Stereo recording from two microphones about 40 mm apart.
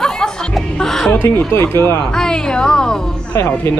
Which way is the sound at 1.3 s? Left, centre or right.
Left.